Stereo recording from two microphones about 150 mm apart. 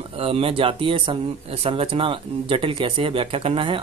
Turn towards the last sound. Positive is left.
turn(degrees=-40)  # may be behind; listen again after turning